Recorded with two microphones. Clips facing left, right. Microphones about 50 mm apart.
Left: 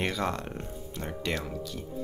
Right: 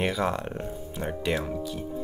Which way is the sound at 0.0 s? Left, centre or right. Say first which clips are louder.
Right 4 dB; centre.